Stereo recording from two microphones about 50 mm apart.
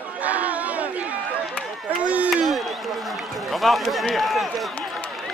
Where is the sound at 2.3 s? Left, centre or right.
Centre.